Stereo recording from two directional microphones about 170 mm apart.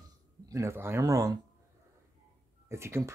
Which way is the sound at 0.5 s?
15° right (ahead or behind).